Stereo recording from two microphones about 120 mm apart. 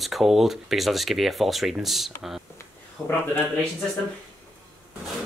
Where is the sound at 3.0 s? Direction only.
35° left (ahead or behind).